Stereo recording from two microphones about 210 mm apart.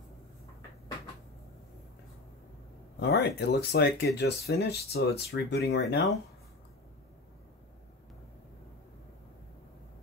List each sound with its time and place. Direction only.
3.0 s speech: 50° left (ahead or behind)